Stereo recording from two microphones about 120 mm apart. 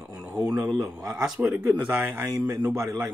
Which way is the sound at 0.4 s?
10° right (ahead or behind).